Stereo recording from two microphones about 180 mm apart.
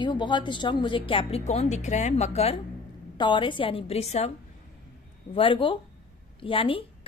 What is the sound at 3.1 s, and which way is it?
A woman's voice, 25° left (ahead or behind).